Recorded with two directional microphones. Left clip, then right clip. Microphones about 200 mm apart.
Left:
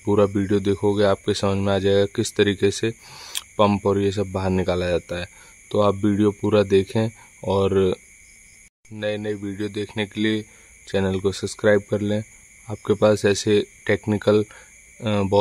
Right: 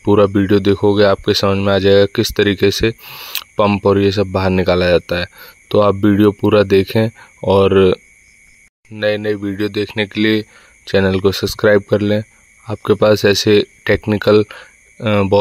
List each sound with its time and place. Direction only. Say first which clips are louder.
0.0 s speech: right 7 dB; 25° right (ahead or behind)
3.0 s speech: right 7 dB; 15° right (ahead or behind)
9.0 s speech: right 9 dB; 25° right (ahead or behind)